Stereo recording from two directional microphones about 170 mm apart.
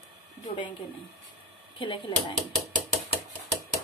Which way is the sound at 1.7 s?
30° left (ahead or behind).